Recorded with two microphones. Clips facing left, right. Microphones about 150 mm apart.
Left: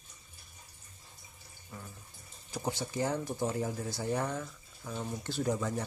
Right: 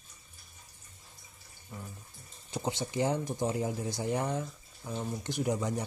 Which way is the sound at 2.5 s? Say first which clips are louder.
Right 2 dB; 20° right (ahead or behind).